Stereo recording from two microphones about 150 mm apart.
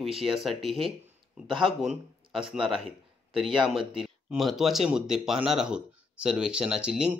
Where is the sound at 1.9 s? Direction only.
35° right (ahead or behind).